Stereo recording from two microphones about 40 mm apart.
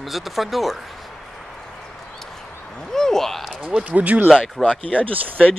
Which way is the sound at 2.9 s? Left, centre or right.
Centre.